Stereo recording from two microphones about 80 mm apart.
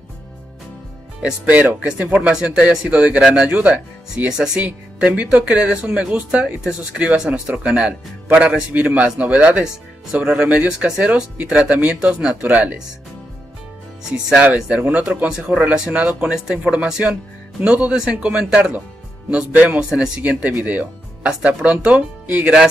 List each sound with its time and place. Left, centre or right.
1.2 s speech: centre
14.1 s speech: centre